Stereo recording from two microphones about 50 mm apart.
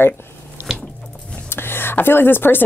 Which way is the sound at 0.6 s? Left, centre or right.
Right.